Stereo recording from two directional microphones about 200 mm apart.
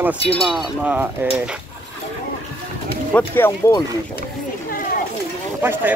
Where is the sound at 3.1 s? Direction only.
10° left (ahead or behind).